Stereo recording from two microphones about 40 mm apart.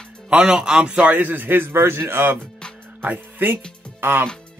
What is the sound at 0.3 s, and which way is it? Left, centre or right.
Speech, right.